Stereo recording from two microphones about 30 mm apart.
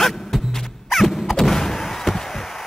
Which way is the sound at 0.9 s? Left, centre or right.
Centre.